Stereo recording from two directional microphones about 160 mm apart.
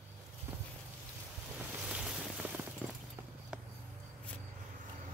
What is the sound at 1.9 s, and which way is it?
Boat, 5° right (ahead or behind).